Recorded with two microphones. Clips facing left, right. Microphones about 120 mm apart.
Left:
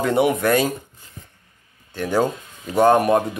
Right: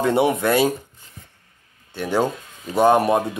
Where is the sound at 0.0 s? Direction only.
25° right (ahead or behind).